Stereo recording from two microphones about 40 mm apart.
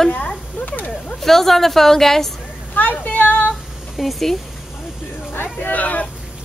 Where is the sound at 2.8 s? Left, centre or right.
Left.